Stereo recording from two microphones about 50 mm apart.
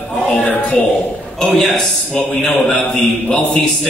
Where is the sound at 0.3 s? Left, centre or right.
Left.